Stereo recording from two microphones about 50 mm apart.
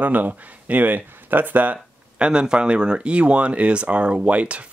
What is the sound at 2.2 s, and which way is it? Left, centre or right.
Speech, centre.